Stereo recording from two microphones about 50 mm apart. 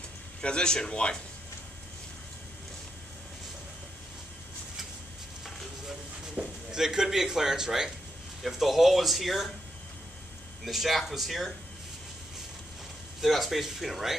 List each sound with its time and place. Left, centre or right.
0.4 s speech: centre
6.3 s speech: centre
10.6 s speech: centre
13.2 s speech: centre